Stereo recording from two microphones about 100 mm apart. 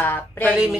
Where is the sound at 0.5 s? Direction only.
5° right (ahead or behind).